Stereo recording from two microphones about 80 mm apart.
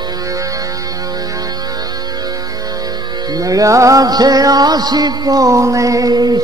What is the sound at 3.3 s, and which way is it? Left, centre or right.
Music, right.